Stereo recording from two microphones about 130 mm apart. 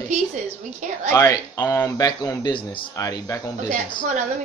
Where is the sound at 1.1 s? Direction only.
25° left (ahead or behind).